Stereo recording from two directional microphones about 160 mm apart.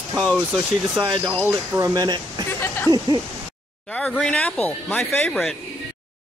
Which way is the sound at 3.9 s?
5° left (ahead or behind).